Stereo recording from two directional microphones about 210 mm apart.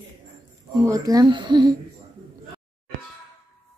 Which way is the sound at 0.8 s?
15° right (ahead or behind).